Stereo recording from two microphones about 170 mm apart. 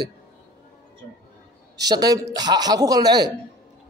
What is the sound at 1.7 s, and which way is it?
A man's voice, 20° right (ahead or behind).